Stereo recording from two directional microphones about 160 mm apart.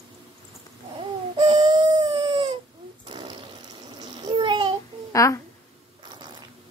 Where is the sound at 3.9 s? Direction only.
25° right (ahead or behind).